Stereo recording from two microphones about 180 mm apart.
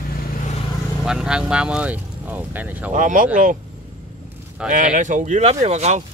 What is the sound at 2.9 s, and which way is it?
Speech, 45° right (ahead or behind).